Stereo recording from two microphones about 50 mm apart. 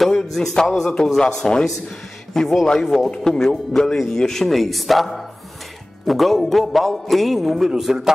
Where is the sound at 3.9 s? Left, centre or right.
Centre.